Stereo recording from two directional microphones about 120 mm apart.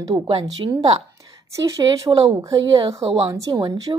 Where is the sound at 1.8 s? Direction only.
35° right (ahead or behind).